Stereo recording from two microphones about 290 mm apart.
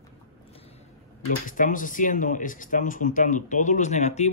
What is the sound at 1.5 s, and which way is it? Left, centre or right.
Speech, left.